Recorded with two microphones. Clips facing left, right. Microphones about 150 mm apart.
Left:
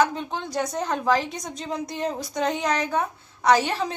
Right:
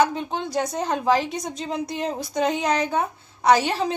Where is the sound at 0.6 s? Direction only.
25° right (ahead or behind).